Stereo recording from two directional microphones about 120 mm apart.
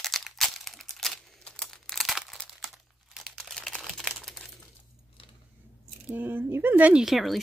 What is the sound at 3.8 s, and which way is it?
Crumpling, 5° left (ahead or behind).